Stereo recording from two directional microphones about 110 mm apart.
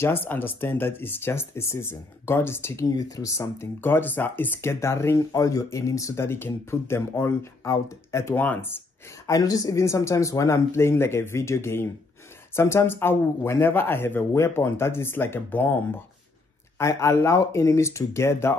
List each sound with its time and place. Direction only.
0.0 s speech: 20° left (ahead or behind)
9.3 s speech: 35° left (ahead or behind)